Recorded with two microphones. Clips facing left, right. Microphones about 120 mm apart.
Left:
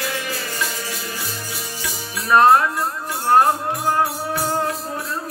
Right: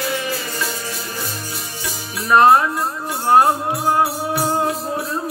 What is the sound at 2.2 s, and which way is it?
Music, 10° right (ahead or behind).